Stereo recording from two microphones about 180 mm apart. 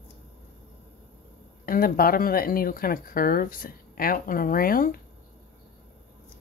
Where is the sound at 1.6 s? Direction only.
55° left (ahead or behind).